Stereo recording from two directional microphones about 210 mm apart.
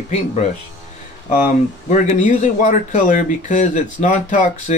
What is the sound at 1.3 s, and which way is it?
Speech, 40° left (ahead or behind).